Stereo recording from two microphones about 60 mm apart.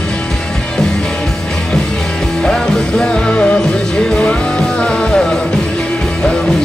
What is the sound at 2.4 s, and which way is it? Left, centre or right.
Music, centre.